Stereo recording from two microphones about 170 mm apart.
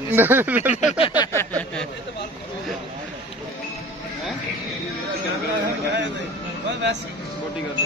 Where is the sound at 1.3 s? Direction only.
5° left (ahead or behind).